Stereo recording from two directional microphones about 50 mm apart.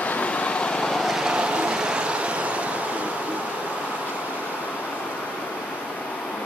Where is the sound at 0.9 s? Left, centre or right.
Centre; by 2.3 s right.